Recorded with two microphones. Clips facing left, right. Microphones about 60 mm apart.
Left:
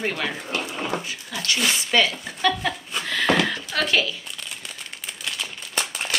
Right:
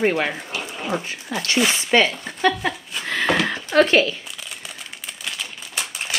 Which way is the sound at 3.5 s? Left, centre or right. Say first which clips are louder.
Right 7 dB; right.